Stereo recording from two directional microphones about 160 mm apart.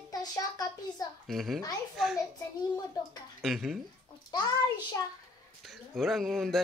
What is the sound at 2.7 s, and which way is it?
Speech, 25° left (ahead or behind).